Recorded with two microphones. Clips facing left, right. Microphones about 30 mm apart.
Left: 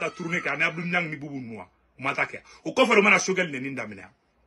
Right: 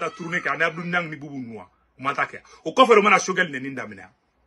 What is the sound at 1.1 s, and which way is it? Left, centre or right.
Speech, left.